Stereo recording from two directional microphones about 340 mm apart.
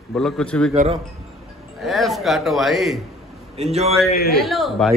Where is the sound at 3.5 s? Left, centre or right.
Centre.